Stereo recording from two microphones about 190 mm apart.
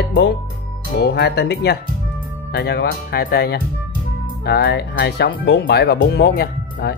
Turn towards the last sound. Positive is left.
turn(degrees=60)  # may be behind; listen again after turning